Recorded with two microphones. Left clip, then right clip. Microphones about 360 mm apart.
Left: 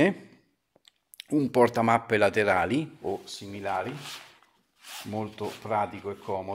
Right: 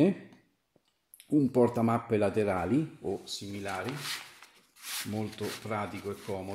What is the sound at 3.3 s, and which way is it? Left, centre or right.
Speech, left.